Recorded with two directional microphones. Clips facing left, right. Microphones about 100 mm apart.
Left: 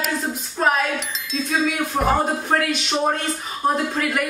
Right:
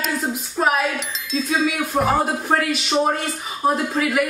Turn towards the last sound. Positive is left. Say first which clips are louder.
# right 2 dB
turn(degrees=-5)  # may be behind; listen again after turning